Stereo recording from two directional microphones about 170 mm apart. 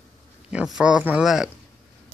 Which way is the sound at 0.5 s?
5° right (ahead or behind).